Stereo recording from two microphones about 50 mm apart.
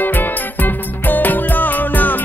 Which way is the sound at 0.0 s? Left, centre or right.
Left.